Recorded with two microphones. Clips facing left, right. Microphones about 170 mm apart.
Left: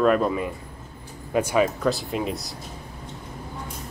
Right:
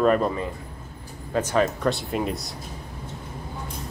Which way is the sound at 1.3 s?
10° left (ahead or behind).